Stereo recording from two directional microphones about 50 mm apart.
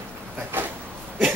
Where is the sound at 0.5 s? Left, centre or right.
Right.